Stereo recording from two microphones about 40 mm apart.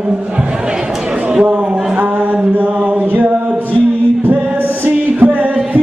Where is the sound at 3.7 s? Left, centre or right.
Right.